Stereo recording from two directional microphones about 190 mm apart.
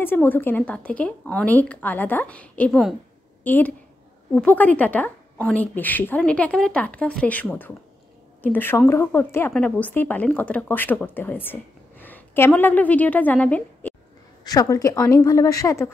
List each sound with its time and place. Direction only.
0.0 s speech: 10° left (ahead or behind)
14.4 s speech: 20° left (ahead or behind)